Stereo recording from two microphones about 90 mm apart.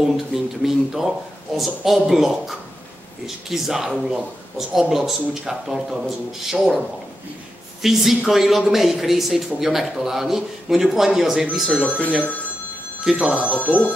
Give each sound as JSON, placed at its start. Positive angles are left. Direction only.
{"t": 0.6, "sound": "speech", "side_deg": -5}
{"t": 7.8, "sound": "speech", "side_deg": -5}
{"t": 11.7, "sound": "speech", "side_deg": 15}
{"t": 13.0, "sound": "speech", "side_deg": -5}
{"t": 13.4, "sound": "speech", "side_deg": 15}